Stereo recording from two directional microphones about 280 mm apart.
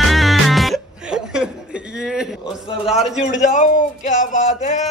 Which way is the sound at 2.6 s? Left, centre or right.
Left.